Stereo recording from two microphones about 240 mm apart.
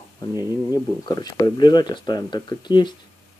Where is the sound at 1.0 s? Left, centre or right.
Centre.